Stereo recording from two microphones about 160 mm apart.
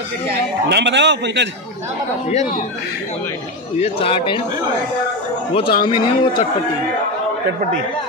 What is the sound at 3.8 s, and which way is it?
Speech, 35° left (ahead or behind).